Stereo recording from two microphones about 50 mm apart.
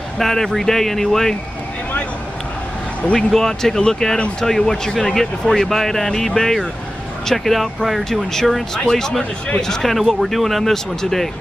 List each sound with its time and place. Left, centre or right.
0.2 s speech: centre
3.2 s speech: centre
9.9 s speech: centre